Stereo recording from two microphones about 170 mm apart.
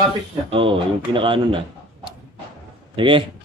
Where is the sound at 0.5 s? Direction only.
30° right (ahead or behind).